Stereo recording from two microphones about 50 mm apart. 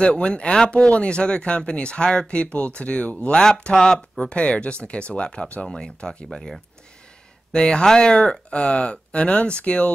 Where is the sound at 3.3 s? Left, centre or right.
Centre.